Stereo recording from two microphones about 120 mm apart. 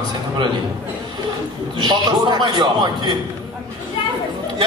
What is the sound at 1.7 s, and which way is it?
A man's voice, 40° right (ahead or behind).